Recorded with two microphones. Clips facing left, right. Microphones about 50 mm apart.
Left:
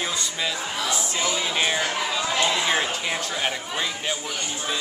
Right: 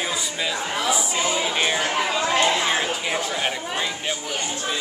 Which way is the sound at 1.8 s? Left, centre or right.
Right.